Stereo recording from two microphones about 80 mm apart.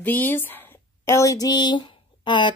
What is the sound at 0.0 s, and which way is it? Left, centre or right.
Speech, left.